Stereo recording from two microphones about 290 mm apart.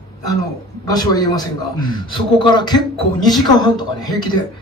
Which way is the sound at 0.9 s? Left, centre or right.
Centre.